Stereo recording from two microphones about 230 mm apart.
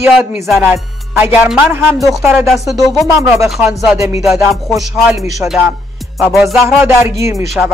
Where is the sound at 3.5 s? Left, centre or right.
Centre.